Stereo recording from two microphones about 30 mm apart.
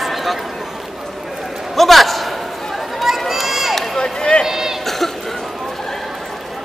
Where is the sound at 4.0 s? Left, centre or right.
Left.